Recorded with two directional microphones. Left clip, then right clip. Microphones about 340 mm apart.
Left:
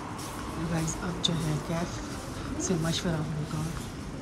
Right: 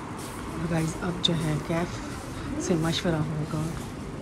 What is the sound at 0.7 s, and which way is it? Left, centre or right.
Speech, centre.